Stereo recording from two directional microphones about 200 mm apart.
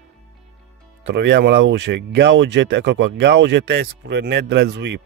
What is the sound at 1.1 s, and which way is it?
Speech, 60° right (ahead or behind).